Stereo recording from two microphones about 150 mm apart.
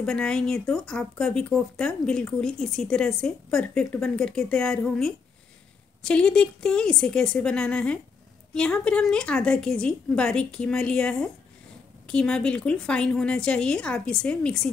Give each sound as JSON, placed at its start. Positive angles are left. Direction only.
{"t": 0.0, "sound": "speech", "side_deg": 5}